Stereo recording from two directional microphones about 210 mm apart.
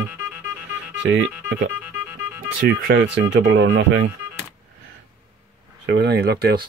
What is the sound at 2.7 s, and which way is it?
Speech, 55° right (ahead or behind).